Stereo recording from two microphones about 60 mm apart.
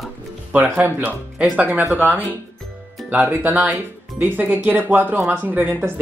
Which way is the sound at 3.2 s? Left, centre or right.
Right.